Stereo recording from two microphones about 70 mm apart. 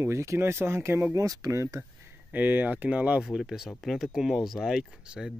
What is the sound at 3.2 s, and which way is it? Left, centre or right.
Speech, centre.